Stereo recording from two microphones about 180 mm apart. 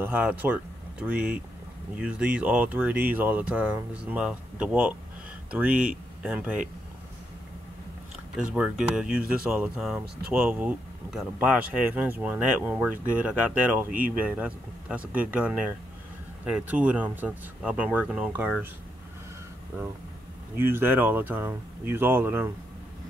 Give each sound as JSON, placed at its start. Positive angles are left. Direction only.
{"t": 0.0, "sound": "speech", "side_deg": -10}
{"t": 8.4, "sound": "speech", "side_deg": -5}
{"t": 20.5, "sound": "speech", "side_deg": -10}